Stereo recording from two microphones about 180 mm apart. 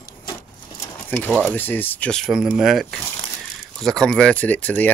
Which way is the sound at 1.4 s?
10° left (ahead or behind).